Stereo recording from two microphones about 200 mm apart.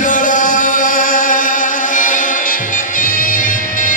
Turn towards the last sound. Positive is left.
turn(degrees=40)  # may be behind; listen again after turning